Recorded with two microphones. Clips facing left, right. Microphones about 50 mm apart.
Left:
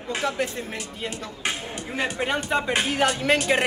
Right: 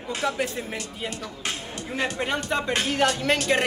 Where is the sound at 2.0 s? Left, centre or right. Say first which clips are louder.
Left 1 dB; centre.